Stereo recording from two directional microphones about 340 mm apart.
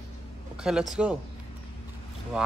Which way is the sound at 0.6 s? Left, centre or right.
Centre.